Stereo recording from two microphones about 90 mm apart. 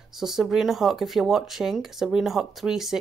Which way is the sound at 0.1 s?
5° right (ahead or behind).